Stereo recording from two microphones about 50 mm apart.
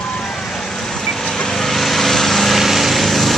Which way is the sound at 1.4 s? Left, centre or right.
Centre.